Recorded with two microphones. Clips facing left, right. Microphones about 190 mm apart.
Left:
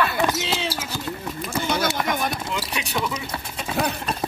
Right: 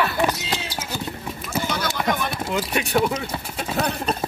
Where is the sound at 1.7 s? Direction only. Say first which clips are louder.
Left 2 dB; 45° left (ahead or behind).